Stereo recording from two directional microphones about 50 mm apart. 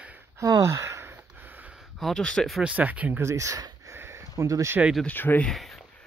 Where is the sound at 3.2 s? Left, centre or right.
Right.